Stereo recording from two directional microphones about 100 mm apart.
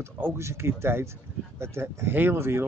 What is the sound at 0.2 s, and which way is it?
Speech, 25° right (ahead or behind).